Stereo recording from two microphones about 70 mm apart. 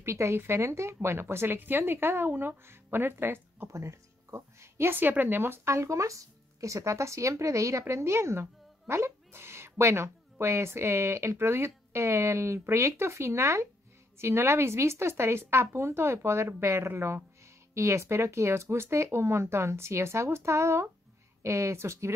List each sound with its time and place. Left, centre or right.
0.0 s speech: right
3.7 s speech: right